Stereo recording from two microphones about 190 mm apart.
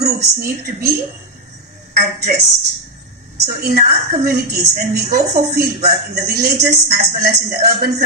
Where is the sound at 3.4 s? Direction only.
55° right (ahead or behind).